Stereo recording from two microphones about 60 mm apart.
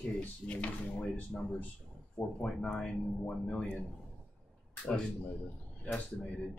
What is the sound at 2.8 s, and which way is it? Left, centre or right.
Speech, centre.